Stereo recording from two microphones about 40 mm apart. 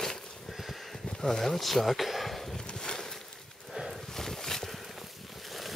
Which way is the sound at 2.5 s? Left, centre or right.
Centre.